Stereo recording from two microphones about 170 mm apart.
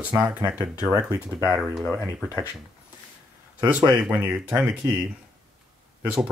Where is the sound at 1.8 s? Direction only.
15° right (ahead or behind).